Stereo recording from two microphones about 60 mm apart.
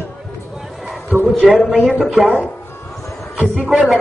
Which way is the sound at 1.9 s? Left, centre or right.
Centre.